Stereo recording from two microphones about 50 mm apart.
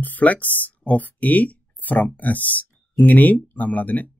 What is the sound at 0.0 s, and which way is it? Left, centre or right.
Speech, left.